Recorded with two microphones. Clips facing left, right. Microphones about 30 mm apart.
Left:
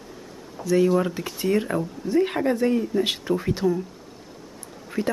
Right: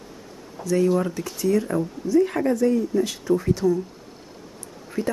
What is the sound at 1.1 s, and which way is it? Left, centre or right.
Speech, left.